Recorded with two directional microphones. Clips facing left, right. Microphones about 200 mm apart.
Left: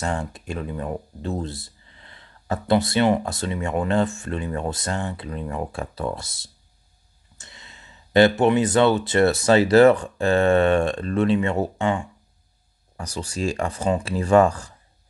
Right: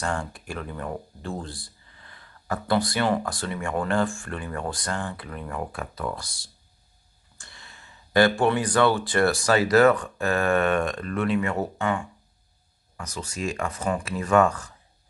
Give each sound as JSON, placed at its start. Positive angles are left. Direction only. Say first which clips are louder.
{"t": 0.0, "sound": "speech", "louder": "left 2 dB", "side_deg": 20}